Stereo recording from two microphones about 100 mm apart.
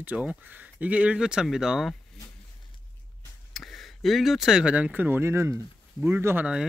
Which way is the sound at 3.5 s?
Centre (ahead or behind).